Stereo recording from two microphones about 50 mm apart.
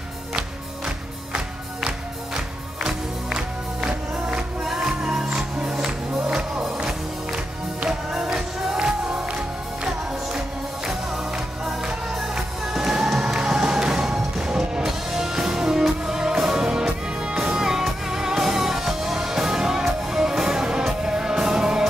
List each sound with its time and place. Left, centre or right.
1.9 s music: centre
10.9 s music: centre